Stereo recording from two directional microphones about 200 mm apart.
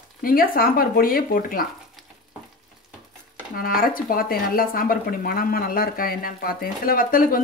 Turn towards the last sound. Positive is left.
turn(degrees=45)  # may be behind; listen again after turning